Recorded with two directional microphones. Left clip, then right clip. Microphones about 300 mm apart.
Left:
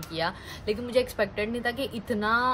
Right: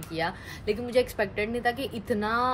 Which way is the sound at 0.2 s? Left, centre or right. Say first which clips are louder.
Even; centre.